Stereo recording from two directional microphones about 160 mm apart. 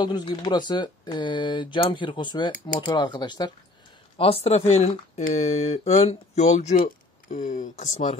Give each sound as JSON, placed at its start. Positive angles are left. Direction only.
{"t": 0.0, "sound": "speech", "side_deg": 25}
{"t": 4.2, "sound": "speech", "side_deg": 40}